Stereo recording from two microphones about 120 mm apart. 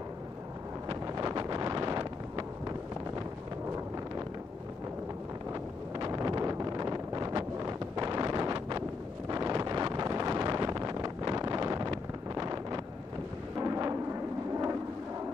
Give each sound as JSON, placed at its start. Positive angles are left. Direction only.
{"t": 0.8, "sound": "wind noise", "side_deg": -30}
{"t": 5.5, "sound": "wind noise", "side_deg": -30}
{"t": 13.6, "sound": "a sound", "side_deg": -30}